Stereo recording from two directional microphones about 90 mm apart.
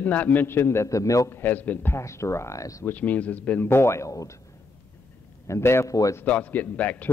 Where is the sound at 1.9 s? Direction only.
30° left (ahead or behind).